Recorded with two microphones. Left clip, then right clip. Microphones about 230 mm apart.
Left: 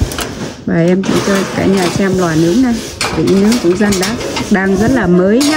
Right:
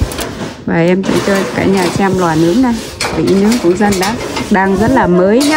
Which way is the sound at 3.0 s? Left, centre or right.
Centre.